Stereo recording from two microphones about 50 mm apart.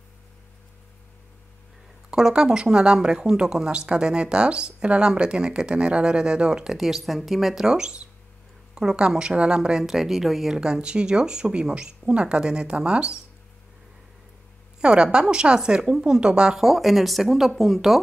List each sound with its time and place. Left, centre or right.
2.0 s speech: centre
10.6 s speech: centre
14.8 s speech: centre
16.6 s speech: centre